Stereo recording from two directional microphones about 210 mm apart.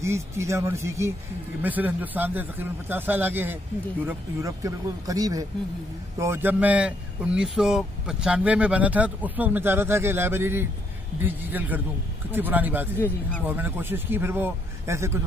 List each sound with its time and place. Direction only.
0.0 s speech: 15° right (ahead or behind)